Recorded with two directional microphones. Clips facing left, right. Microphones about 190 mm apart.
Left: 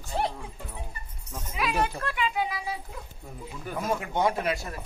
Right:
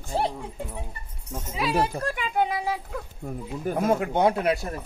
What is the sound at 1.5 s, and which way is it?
Speech, 30° right (ahead or behind).